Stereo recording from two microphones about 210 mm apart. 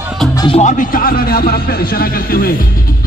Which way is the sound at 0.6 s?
35° left (ahead or behind).